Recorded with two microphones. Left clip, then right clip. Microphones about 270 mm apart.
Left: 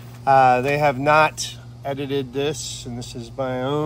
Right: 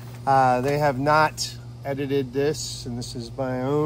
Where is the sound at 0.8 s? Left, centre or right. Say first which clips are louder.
Left 2 dB; left.